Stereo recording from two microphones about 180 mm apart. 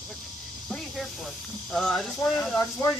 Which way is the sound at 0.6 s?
Centre (ahead or behind).